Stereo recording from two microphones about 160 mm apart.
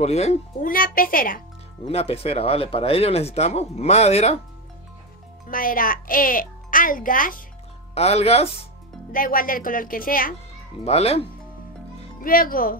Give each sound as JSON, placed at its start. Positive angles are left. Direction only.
{"t": 0.0, "sound": "speech", "side_deg": 45}
{"t": 0.7, "sound": "a child's voice", "side_deg": 60}
{"t": 1.9, "sound": "speech", "side_deg": 40}
{"t": 5.5, "sound": "a child's voice", "side_deg": 60}
{"t": 7.9, "sound": "speech", "side_deg": 40}
{"t": 9.1, "sound": "a child's voice", "side_deg": 60}
{"t": 10.8, "sound": "speech", "side_deg": 40}
{"t": 12.2, "sound": "a child's voice", "side_deg": 60}